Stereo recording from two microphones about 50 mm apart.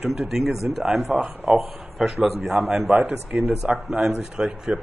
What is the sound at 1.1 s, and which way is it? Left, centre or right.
Speech, right.